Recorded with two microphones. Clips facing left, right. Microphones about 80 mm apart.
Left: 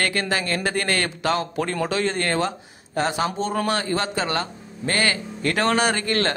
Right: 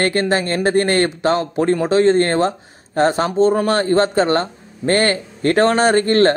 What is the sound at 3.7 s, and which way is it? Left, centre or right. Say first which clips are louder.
A man's voice: right 8 dB; right.